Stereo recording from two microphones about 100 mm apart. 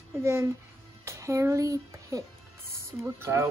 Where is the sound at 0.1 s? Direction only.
25° right (ahead or behind).